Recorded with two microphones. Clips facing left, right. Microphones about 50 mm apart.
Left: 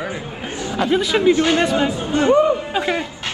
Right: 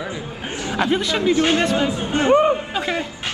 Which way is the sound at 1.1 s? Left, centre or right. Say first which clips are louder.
Left 3 dB; centre.